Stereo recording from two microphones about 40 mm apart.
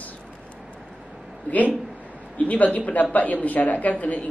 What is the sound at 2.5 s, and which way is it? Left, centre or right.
Speech, left.